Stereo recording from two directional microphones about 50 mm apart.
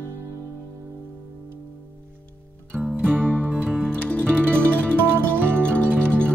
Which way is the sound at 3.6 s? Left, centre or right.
Right.